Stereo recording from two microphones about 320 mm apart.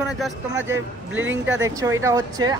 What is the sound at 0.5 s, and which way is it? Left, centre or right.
Speech, right.